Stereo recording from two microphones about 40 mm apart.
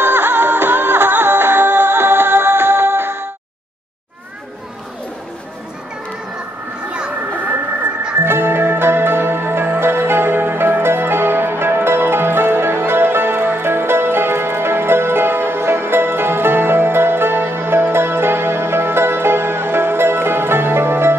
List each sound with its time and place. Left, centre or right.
0.0 s music: right
8.2 s music: right